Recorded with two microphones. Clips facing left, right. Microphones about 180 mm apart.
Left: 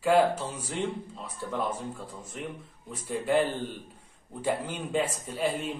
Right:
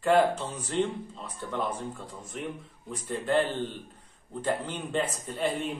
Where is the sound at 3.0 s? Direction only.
10° left (ahead or behind).